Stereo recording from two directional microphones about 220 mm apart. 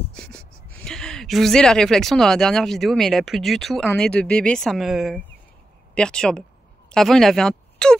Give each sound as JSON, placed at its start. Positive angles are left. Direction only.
{"t": 0.1, "sound": "speech", "side_deg": 5}